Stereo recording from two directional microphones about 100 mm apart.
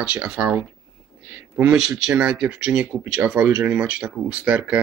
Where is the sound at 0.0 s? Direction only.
10° right (ahead or behind).